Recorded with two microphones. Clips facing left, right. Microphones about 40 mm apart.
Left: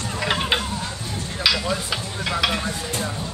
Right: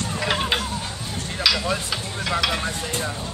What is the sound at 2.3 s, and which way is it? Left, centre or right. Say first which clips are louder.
Speech: even; centre.